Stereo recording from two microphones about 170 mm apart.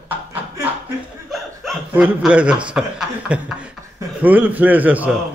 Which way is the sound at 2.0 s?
5° right (ahead or behind).